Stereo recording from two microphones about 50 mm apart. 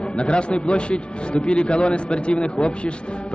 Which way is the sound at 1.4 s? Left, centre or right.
Left.